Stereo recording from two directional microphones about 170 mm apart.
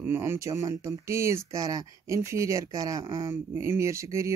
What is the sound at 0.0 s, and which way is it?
Speech, 15° right (ahead or behind).